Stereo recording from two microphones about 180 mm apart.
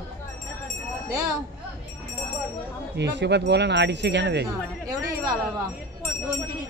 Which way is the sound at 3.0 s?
75° right (ahead or behind).